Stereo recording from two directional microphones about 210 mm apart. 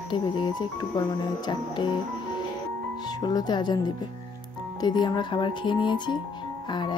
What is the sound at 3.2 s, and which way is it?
Speech, 20° left (ahead or behind).